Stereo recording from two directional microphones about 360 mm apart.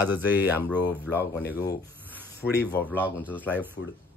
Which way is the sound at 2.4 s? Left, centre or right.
Left.